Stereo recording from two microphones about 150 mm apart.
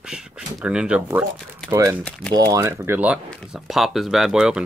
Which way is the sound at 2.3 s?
20° right (ahead or behind).